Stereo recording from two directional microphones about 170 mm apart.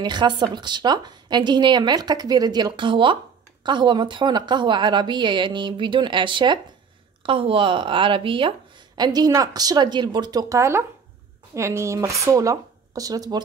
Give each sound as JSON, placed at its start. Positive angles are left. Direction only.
{"t": 0.0, "sound": "speech", "side_deg": -25}